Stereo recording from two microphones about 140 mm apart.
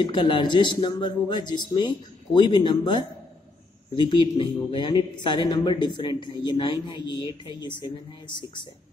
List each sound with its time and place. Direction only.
0.0 s speech: 35° left (ahead or behind)